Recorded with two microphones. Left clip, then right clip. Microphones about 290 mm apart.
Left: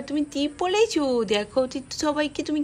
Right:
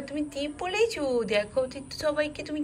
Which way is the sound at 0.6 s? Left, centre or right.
Centre.